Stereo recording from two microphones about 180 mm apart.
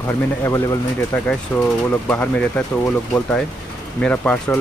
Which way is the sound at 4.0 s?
10° left (ahead or behind).